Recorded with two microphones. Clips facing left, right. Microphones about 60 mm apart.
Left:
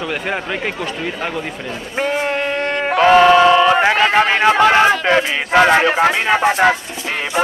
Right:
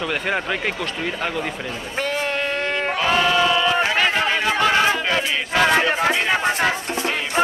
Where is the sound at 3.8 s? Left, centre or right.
Left.